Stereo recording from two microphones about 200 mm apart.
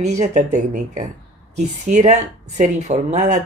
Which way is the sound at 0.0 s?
35° right (ahead or behind).